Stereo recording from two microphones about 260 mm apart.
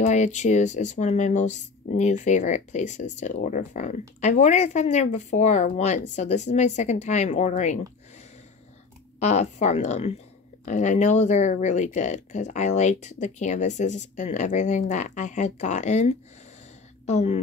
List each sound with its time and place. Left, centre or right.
0.0 s speech: left
9.2 s a woman's voice: left